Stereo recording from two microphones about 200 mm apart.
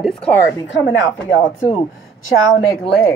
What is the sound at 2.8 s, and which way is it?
Speech, 5° left (ahead or behind).